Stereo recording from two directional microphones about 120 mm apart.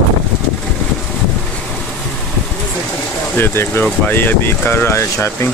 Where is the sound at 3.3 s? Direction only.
20° left (ahead or behind).